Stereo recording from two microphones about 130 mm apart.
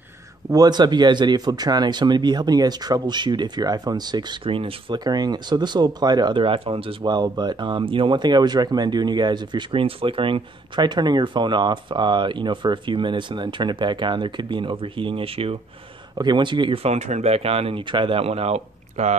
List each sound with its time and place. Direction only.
0.5 s speech: 30° right (ahead or behind); by 15.5 s 45° right (ahead or behind)
16.2 s speech: 35° right (ahead or behind)
16.8 s speech: 60° right (ahead or behind)